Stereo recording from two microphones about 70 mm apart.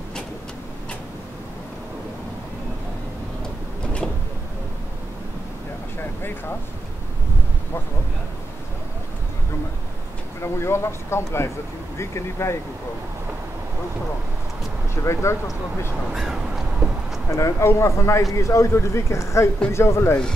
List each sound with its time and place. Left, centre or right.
10.4 s speech: left
15.0 s speech: left
16.2 s a sound: centre
17.3 s speech: left